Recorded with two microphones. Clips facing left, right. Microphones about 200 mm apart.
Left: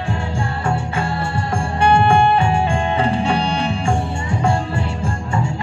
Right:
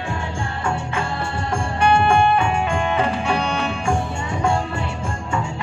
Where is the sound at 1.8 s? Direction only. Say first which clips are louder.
Left 2 dB; 30° left (ahead or behind).